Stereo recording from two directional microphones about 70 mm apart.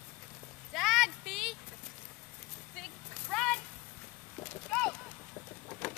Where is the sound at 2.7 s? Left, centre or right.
Centre.